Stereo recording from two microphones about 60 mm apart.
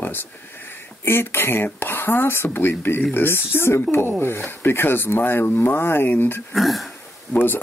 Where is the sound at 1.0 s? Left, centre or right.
Left.